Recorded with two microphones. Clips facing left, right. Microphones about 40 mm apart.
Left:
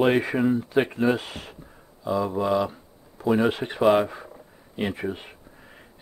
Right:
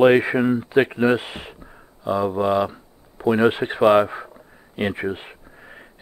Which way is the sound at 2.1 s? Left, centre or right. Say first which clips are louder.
Right 3 dB; centre.